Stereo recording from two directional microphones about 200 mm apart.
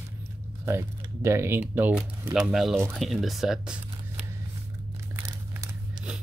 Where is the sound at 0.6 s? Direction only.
15° right (ahead or behind).